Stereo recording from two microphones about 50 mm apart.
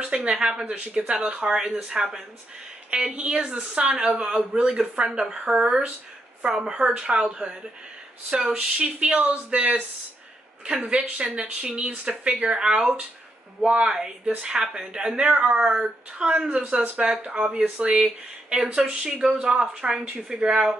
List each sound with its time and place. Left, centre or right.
0.3 s a woman's voice: centre
8.5 s a woman's voice: right
12.3 s a woman's voice: centre
19.0 s a woman's voice: centre
19.3 s a woman's voice: right